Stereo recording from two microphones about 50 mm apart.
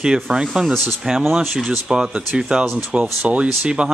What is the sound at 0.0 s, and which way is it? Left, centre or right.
Speech, centre.